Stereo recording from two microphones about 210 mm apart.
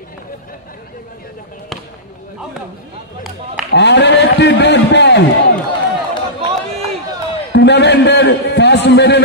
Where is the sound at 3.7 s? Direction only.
55° left (ahead or behind).